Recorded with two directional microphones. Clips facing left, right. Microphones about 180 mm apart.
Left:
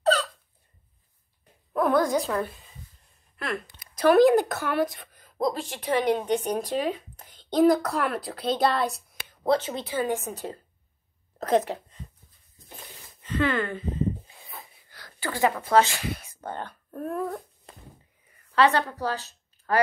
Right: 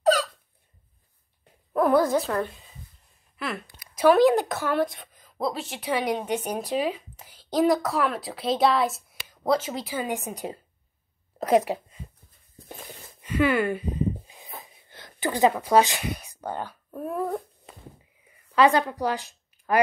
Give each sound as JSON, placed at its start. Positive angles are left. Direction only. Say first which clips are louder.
{"t": 0.0, "sound": "hiccup", "louder": "right 2 dB", "side_deg": -10}
{"t": 1.7, "sound": "a woman's voice", "louder": "right 2 dB", "side_deg": -10}
{"t": 10.0, "sound": "a woman's voice", "louder": "left 1 dB", "side_deg": -15}
{"t": 13.2, "sound": "wheeze", "louder": "right 3 dB", "side_deg": -10}
{"t": 18.3, "sound": "a sound", "louder": "right 2 dB", "side_deg": -10}